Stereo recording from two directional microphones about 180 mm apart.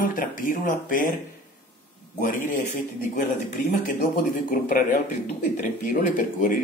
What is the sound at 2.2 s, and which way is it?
Speech, 50° left (ahead or behind).